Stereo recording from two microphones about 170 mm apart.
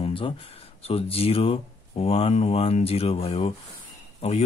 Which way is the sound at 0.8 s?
35° left (ahead or behind).